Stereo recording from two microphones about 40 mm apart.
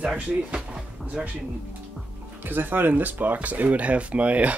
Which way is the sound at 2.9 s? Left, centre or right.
Right.